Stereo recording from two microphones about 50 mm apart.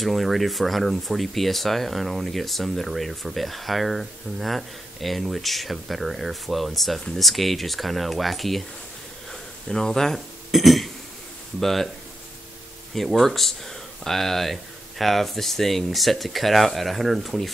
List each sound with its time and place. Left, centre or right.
0.0 s speech: centre
12.9 s speech: centre